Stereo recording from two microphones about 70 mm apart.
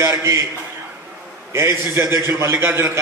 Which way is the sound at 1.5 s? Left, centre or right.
Right.